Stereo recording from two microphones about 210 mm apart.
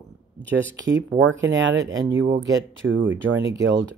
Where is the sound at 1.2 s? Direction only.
60° right (ahead or behind).